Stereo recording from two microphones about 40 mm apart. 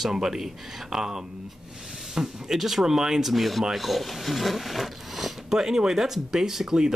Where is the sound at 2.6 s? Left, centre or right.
Centre.